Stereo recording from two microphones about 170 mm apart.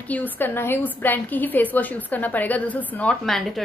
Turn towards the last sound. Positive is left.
turn(degrees=0)  # may be behind; listen again after turning